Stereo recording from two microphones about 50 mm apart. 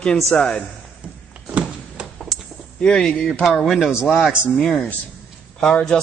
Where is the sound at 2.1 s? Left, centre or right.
Centre.